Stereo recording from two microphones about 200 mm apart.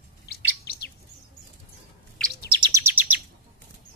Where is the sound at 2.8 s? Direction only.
10° right (ahead or behind).